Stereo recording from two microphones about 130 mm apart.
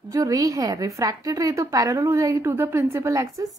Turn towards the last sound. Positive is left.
turn(degrees=-25)  # may be behind; listen again after turning